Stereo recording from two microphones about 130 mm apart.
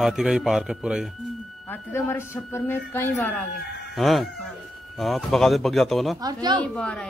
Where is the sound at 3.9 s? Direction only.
Centre (ahead or behind).